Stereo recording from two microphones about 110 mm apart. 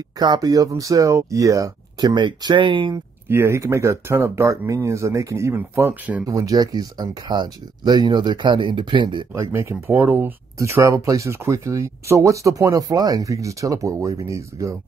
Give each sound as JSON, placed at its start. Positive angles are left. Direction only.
{"t": 0.2, "sound": "speech", "side_deg": -35}
{"t": 3.3, "sound": "speech", "side_deg": -25}
{"t": 6.2, "sound": "speech", "side_deg": -35}
{"t": 9.3, "sound": "speech", "side_deg": -25}